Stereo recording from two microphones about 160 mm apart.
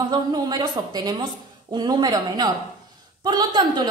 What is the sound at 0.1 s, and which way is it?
A woman's voice, 25° right (ahead or behind).